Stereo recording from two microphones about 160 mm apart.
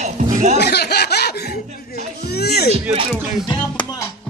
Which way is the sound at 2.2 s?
85° left.